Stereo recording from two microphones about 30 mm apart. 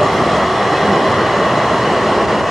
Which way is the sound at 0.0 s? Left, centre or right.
Centre.